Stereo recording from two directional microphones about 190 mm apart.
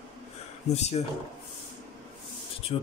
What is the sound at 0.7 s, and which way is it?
Speech, 35° left (ahead or behind).